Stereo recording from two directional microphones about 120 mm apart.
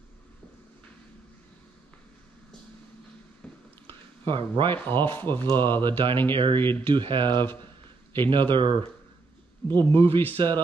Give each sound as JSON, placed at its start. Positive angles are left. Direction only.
{"t": 3.4, "sound": "squish", "side_deg": 5}
{"t": 4.3, "sound": "speech", "side_deg": -45}
{"t": 4.6, "sound": "speech", "side_deg": 15}
{"t": 5.5, "sound": "speech", "side_deg": -40}
{"t": 6.6, "sound": "speech", "side_deg": 20}
{"t": 6.9, "sound": "speech", "side_deg": -40}
{"t": 7.3, "sound": "speech", "side_deg": 15}
{"t": 8.2, "sound": "speech", "side_deg": -40}
{"t": 9.7, "sound": "speech", "side_deg": 15}
{"t": 10.3, "sound": "speech", "side_deg": -40}